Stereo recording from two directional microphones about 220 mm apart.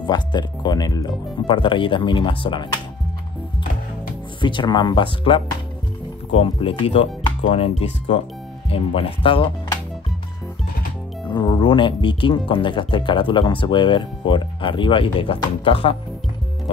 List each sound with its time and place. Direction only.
0.0 s speech: 20° left (ahead or behind)
4.4 s speech: 20° left (ahead or behind)
11.2 s speech: 20° left (ahead or behind)